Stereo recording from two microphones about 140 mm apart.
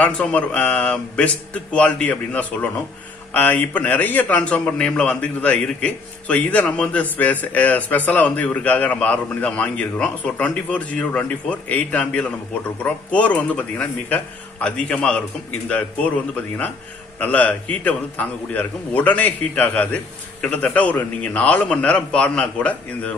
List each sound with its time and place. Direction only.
0.0 s a man's voice: 10° left (ahead or behind)
17.2 s a man's voice: 10° left (ahead or behind)